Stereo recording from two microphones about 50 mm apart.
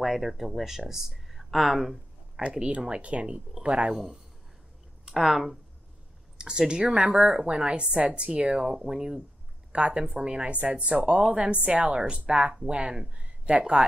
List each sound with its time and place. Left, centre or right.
0.0 s speech: centre
2.7 s speech: right
3.9 s speech: centre
6.3 s a sound: centre
6.7 s speech: centre
13.2 s a sound: right